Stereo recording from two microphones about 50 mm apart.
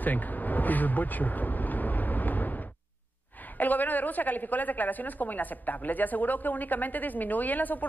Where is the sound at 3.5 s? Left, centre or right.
Left.